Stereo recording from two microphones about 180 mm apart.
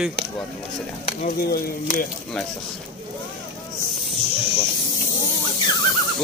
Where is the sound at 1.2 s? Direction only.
55° left (ahead or behind).